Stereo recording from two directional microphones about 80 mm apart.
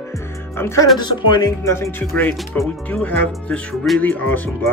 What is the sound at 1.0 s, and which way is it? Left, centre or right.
Speech, left.